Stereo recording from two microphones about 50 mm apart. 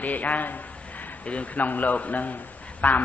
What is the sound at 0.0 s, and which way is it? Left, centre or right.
A man's voice, left.